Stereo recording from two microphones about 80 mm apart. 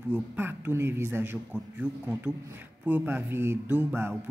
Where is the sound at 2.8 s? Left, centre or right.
Right.